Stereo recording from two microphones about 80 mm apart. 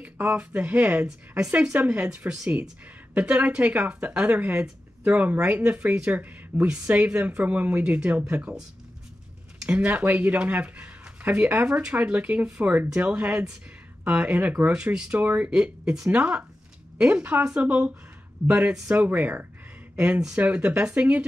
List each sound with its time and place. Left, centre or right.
0.0 s speech: centre
9.7 s speech: centre
15.5 s speech: centre
20.0 s speech: centre